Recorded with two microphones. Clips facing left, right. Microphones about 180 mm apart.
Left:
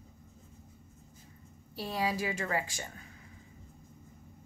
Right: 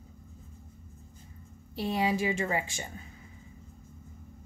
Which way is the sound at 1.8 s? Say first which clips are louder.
Right 4 dB; 20° right (ahead or behind).